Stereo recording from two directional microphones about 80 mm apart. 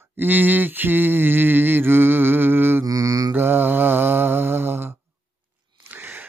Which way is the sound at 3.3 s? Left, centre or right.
Right.